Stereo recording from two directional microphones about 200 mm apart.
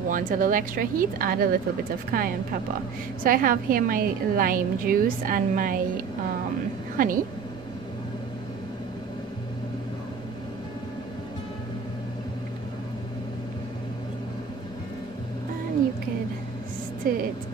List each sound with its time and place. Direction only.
0.1 s a woman's voice: 40° right (ahead or behind)
7.0 s a woman's voice: 45° right (ahead or behind)
17.0 s a sound: 45° right (ahead or behind)